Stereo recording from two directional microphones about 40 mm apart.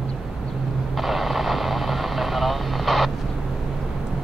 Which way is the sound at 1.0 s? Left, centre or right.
Centre.